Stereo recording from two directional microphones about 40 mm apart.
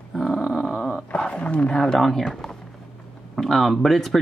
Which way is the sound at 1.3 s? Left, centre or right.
Left.